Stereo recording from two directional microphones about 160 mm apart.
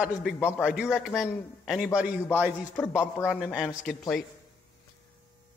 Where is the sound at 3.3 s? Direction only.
5° right (ahead or behind).